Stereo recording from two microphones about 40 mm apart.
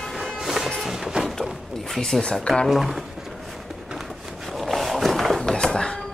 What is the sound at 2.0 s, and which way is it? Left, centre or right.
Speech, centre.